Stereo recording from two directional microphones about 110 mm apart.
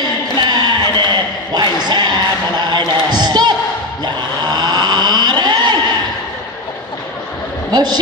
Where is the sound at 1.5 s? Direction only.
40° right (ahead or behind).